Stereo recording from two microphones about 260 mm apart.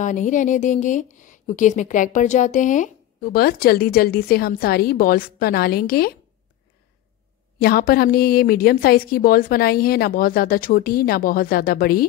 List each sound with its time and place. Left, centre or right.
0.0 s speech: left
7.6 s speech: left